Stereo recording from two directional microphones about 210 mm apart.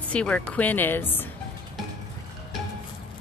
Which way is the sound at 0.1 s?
5° left (ahead or behind).